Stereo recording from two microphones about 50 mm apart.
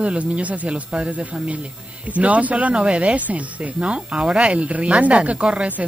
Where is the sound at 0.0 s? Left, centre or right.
Right.